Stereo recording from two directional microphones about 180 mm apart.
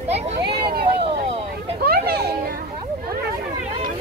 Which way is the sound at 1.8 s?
60° right (ahead or behind).